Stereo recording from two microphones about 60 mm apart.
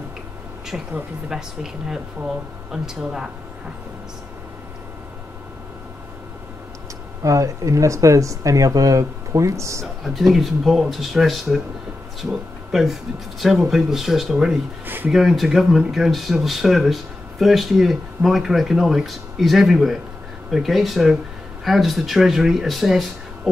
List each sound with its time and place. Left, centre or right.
1.3 s speech: centre
7.2 s speech: right
10.0 s speech: centre